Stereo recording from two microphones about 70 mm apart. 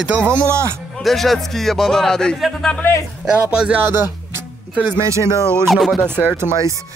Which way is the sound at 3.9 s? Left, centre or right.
Right.